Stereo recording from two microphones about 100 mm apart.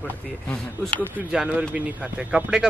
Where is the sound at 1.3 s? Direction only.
5° right (ahead or behind).